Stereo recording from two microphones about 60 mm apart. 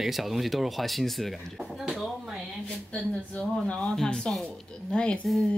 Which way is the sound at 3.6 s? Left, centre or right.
Centre.